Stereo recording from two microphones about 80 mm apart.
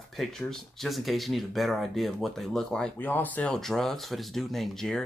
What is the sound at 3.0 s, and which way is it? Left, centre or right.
Speech, left.